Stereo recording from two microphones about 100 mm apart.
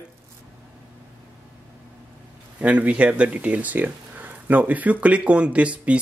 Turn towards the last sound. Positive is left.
turn(degrees=-10)  # may be behind; listen again after turning